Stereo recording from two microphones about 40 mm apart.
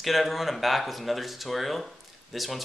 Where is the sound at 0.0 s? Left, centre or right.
Centre.